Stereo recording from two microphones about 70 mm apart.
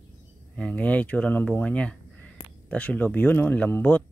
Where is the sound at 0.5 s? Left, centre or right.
Centre.